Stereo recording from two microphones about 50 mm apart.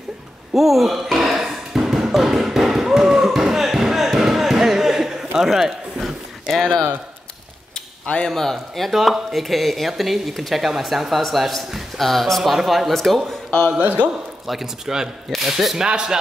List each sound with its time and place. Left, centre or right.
0.6 s a sound: centre
6.5 s speech: centre
8.3 s speech: centre
13.7 s a man's voice: right
14.4 s speech: centre